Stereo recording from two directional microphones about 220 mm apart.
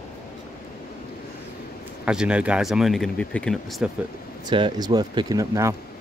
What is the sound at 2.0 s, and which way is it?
Speech, 5° right (ahead or behind).